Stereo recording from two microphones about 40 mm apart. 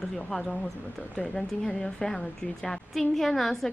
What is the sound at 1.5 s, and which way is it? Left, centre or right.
Speech, left.